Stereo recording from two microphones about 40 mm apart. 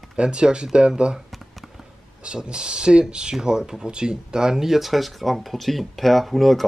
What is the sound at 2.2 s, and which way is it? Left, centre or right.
Speech, right.